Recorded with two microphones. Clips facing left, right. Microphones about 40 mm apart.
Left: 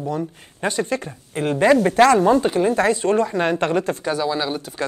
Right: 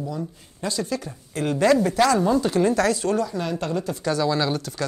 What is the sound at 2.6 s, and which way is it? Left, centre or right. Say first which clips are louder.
A woman's voice: left 3 dB; left.